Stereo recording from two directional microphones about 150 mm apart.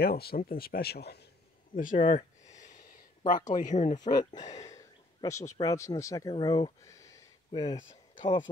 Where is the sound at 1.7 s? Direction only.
65° left (ahead or behind).